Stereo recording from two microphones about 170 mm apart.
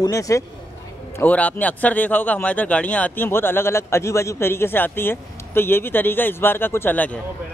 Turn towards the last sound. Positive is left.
turn(degrees=10)  # may be behind; listen again after turning